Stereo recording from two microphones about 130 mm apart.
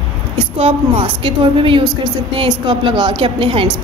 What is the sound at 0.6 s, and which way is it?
A woman's voice, 45° right (ahead or behind).